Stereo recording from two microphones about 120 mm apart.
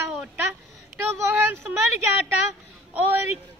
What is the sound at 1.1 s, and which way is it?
Speech, 20° right (ahead or behind).